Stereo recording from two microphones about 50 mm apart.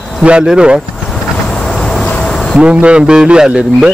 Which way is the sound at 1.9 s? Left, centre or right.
Centre.